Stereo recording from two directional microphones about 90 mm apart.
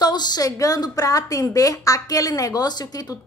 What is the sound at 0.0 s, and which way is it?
A woman's voice, 50° left (ahead or behind).